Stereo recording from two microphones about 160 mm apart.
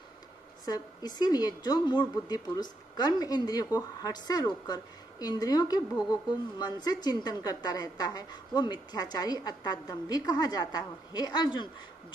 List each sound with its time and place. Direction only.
0.7 s a woman's voice: 25° left (ahead or behind)